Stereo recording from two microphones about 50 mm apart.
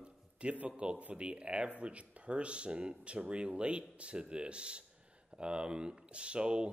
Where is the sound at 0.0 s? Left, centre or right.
Right.